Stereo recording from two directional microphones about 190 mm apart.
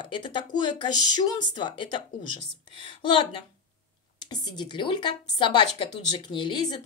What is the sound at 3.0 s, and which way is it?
A woman's voice, 25° left (ahead or behind).